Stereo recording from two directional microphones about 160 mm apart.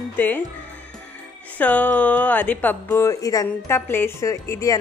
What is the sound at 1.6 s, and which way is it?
A woman's voice, 10° left (ahead or behind).